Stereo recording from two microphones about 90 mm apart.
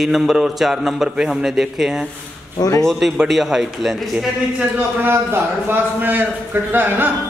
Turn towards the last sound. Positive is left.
turn(degrees=-20)  # may be behind; listen again after turning